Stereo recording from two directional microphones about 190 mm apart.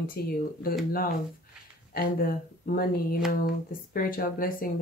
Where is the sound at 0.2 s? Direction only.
50° left (ahead or behind).